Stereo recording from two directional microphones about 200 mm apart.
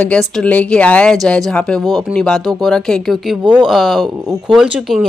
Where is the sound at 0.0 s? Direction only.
5° left (ahead or behind).